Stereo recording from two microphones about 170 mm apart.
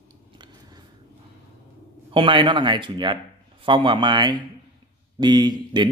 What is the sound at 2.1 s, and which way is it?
Speech, 30° right (ahead or behind).